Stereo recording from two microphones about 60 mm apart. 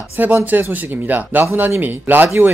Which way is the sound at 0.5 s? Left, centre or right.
Right.